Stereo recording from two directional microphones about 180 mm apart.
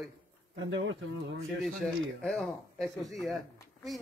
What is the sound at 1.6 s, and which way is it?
A man's voice, centre (ahead or behind).